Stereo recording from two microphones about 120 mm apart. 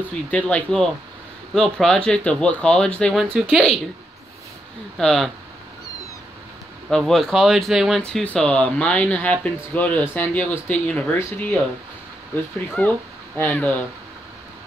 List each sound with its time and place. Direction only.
0.3 s speech: 10° left (ahead or behind)
3.2 s speech: centre (ahead or behind)
4.9 s speech: 5° left (ahead or behind)
6.9 s speech: centre (ahead or behind)
12.8 s speech: 10° left (ahead or behind)